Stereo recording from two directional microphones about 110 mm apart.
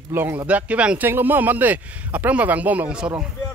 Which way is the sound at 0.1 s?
20° right (ahead or behind).